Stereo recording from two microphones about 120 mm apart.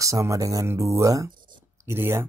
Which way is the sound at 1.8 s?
20° right (ahead or behind).